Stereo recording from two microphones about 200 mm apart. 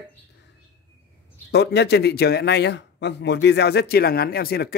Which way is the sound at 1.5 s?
55° left (ahead or behind).